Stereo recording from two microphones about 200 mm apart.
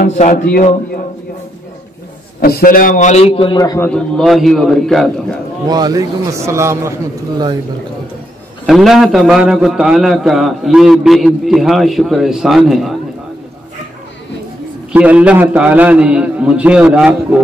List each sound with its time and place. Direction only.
0.0 s a man's voice: 40° left (ahead or behind)
2.4 s a man's voice: 45° left (ahead or behind); by 3.9 s 15° left (ahead or behind)
3.9 s a man's voice: centre (ahead or behind)
5.7 s a man's voice: 20° right (ahead or behind)
8.6 s a man's voice: centre (ahead or behind)
14.9 s a man's voice: 5° right (ahead or behind)